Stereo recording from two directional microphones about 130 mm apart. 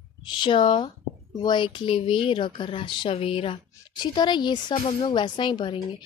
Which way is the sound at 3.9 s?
35° left (ahead or behind).